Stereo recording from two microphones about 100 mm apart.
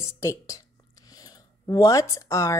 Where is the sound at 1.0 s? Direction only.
40° left (ahead or behind).